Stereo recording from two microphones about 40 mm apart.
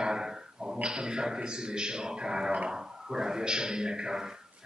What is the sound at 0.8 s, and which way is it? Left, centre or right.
A man's voice, right.